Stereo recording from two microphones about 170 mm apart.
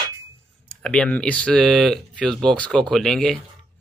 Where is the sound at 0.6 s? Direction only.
5° left (ahead or behind).